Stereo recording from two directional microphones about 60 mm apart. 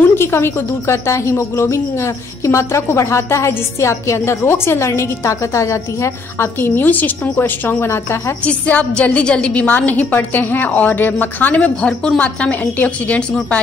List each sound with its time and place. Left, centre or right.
0.1 s a woman's voice: left
6.6 s a woman's voice: left
8.5 s a woman's voice: left